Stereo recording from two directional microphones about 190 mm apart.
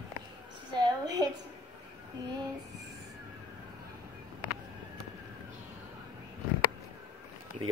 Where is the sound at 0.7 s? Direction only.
20° right (ahead or behind).